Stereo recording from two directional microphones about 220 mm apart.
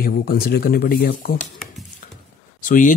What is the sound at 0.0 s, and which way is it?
Speech, 45° left (ahead or behind).